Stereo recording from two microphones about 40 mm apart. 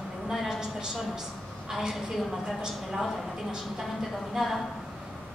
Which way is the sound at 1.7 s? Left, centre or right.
Centre.